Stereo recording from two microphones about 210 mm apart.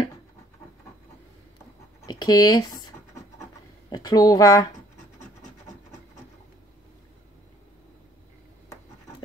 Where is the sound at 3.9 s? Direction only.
20° left (ahead or behind).